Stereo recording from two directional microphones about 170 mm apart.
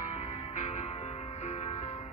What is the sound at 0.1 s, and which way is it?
Music, 45° left (ahead or behind).